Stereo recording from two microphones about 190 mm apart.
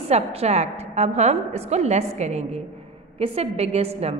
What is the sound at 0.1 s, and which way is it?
A woman's voice, 35° right (ahead or behind).